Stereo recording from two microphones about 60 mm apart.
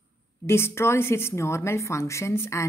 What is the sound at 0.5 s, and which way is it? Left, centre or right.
A woman's voice, left.